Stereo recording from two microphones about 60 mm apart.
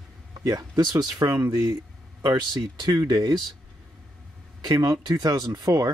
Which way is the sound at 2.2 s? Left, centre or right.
Right.